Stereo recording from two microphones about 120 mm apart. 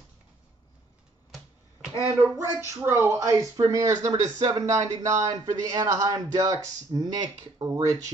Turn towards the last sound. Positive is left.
turn(degrees=-30)  # may be behind; listen again after turning